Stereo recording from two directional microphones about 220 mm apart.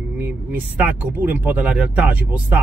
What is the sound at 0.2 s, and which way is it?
Speech, 10° right (ahead or behind).